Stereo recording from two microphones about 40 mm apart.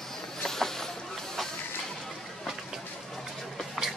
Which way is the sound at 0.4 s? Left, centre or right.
Centre.